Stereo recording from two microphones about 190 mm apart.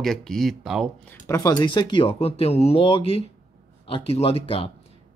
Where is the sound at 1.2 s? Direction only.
15° left (ahead or behind).